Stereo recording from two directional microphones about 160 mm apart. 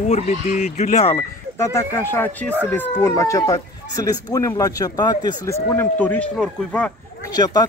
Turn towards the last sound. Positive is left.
turn(degrees=25)  # may be behind; listen again after turning